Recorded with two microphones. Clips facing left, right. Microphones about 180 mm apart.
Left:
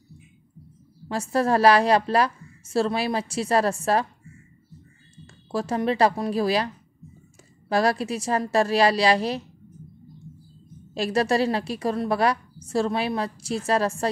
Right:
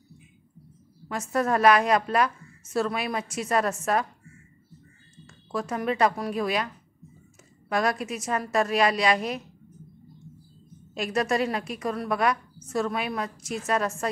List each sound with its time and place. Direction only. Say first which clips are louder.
1.0 s a woman's voice: left 3 dB; 30° left (ahead or behind)
5.2 s speech: left 3 dB; 30° left (ahead or behind)
7.7 s a woman's voice: left 4 dB; 30° left (ahead or behind)
11.0 s a woman's voice: left 3 dB; 30° left (ahead or behind)